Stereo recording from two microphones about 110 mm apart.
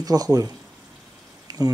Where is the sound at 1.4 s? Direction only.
35° right (ahead or behind).